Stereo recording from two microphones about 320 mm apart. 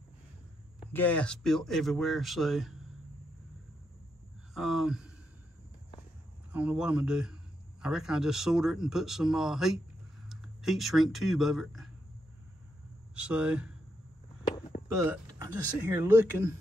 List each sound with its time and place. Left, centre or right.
0.7 s speech: centre
4.6 s speech: centre
6.5 s speech: centre
13.1 s speech: centre
15.0 s speech: centre